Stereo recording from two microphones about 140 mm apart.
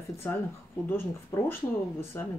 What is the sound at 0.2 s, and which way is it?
Speech, 15° left (ahead or behind).